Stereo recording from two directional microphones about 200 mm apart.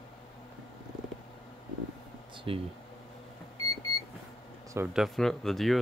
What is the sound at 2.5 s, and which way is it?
Speech, 25° right (ahead or behind).